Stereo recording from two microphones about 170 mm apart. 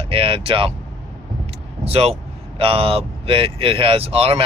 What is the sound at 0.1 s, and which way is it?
Speech, 35° right (ahead or behind).